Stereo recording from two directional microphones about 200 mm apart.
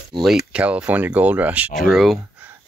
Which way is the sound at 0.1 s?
25° right (ahead or behind).